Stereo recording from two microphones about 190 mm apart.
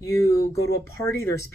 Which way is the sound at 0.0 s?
15° left (ahead or behind).